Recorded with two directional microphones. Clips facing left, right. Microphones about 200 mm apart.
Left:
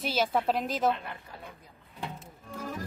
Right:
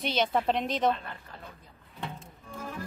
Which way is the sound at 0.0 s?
5° left (ahead or behind).